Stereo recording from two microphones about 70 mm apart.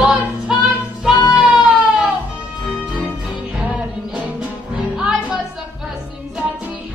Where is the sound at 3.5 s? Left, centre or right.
Right.